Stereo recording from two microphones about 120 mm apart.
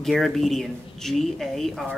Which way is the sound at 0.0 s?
Centre (ahead or behind).